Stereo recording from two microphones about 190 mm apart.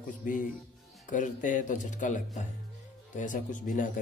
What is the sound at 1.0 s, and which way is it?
A man's voice, 40° left (ahead or behind).